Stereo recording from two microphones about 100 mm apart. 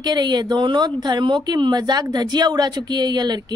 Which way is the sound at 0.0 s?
45° right (ahead or behind).